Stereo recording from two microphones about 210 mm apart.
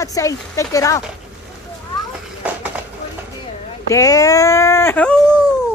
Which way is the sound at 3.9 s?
15° left (ahead or behind).